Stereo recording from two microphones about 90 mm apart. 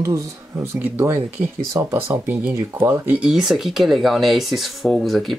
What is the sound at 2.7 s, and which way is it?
Speech, 30° right (ahead or behind).